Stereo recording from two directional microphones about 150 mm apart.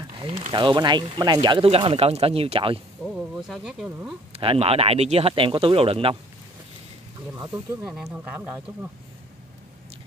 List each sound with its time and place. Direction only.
0.5 s speech: 30° right (ahead or behind)
3.0 s speech: 5° right (ahead or behind)
4.3 s speech: 40° right (ahead or behind)
7.5 s speech: 5° right (ahead or behind)